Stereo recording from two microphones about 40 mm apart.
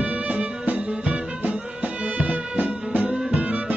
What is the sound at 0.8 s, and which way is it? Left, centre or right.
Music, right.